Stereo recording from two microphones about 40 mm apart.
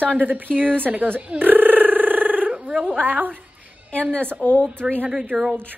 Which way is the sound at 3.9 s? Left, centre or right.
Left.